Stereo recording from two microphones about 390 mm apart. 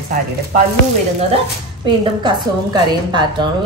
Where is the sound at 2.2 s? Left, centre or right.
Centre.